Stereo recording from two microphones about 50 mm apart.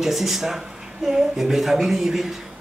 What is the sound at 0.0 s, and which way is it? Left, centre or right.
Speech, centre.